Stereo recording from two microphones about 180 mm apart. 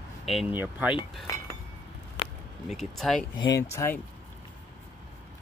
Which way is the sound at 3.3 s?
20° left (ahead or behind).